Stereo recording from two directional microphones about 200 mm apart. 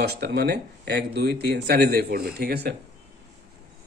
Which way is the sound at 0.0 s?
55° right (ahead or behind).